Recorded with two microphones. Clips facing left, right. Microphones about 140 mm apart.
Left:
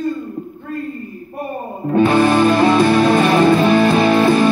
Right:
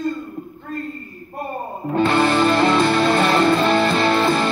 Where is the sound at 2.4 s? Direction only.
15° left (ahead or behind).